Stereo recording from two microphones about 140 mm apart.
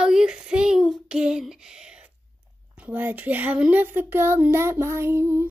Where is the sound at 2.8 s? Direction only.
15° right (ahead or behind).